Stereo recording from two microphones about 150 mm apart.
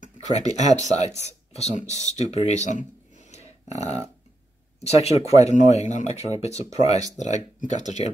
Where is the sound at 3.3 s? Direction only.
45° left (ahead or behind).